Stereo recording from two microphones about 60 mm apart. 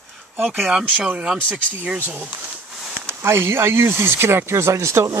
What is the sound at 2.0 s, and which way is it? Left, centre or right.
Speech, right.